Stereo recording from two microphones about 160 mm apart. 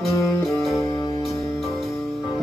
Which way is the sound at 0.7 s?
20° left (ahead or behind).